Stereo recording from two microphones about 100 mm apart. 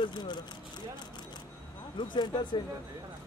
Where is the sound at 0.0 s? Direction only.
50° left (ahead or behind).